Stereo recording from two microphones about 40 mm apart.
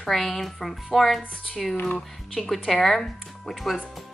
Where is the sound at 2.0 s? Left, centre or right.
Centre.